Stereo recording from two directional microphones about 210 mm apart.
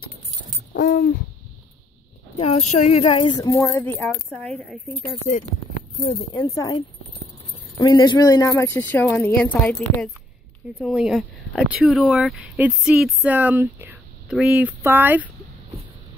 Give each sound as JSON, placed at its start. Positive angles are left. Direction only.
{"t": 0.7, "sound": "hoot", "side_deg": 45}
{"t": 2.3, "sound": "speech", "side_deg": 30}
{"t": 5.3, "sound": "speech", "side_deg": 30}
{"t": 6.2, "sound": "speech", "side_deg": 15}
{"t": 7.8, "sound": "speech", "side_deg": 20}
{"t": 10.8, "sound": "speech", "side_deg": 0}